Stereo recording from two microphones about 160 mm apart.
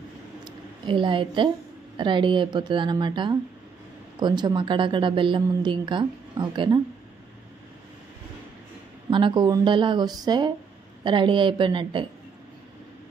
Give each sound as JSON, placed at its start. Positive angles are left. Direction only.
{"t": 0.5, "sound": "a woman's voice", "side_deg": -30}
{"t": 9.1, "sound": "a woman's voice", "side_deg": -30}